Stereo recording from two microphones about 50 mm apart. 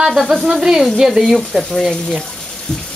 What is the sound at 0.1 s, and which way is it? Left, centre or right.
Speech, centre.